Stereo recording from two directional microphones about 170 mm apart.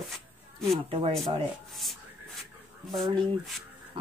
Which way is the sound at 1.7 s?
Centre (ahead or behind).